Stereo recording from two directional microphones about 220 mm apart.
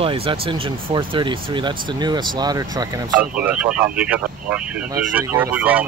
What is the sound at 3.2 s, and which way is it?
Speech, 5° right (ahead or behind).